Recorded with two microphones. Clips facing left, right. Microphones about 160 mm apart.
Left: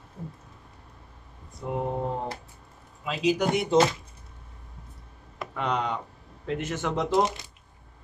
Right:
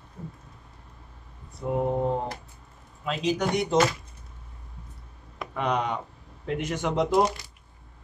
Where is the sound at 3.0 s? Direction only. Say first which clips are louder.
Left 1 dB; 5° left (ahead or behind).